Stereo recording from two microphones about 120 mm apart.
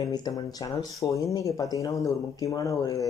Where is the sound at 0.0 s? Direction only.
30° left (ahead or behind).